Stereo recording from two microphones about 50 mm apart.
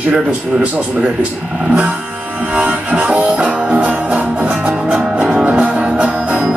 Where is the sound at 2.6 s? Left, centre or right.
Right.